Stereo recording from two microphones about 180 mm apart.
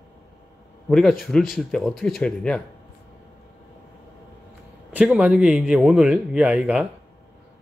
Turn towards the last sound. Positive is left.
turn(degrees=-5)  # may be behind; listen again after turning